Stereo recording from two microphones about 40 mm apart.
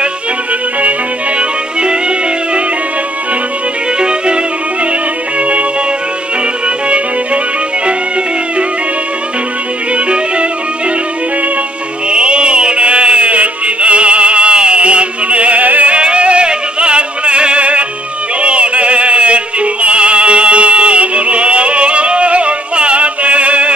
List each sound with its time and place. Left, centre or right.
1.8 s music: right
5.4 s music: right
9.9 s music: right
12.1 s music: right
15.9 s music: right